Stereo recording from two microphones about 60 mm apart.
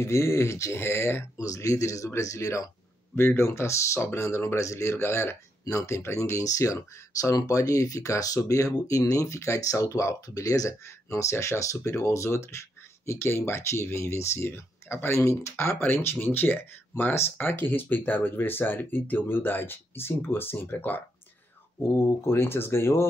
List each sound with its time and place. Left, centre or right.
0.0 s speech: left
1.4 s speech: left
2.0 s speech: left
3.2 s speech: left
6.0 s speech: left
14.5 s speech: left
15.2 s speech: left
21.8 s speech: left